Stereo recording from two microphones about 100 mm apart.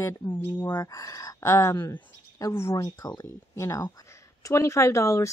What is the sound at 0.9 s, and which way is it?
Speech, 35° left (ahead or behind).